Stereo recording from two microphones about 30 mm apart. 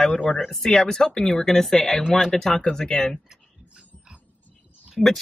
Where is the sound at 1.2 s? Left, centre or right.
Centre.